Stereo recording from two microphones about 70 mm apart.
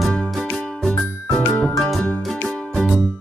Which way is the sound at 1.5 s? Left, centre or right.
Centre.